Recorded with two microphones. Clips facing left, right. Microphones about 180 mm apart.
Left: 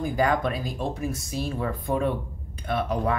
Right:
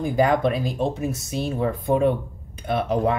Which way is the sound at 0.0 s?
25° right (ahead or behind).